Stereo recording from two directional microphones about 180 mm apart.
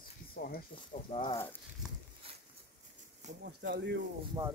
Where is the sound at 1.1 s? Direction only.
25° left (ahead or behind).